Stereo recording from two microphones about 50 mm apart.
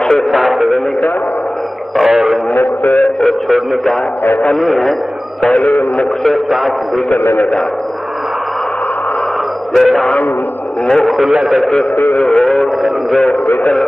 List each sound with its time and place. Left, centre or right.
0.0 s music: centre
0.3 s a man's voice: centre
2.0 s radio: centre
2.5 s a sound: left
2.9 s radio: centre
4.2 s speech: left
4.5 s a man's voice: centre
6.2 s a man's voice: centre
9.8 s a man's voice: centre
12.3 s a sound: centre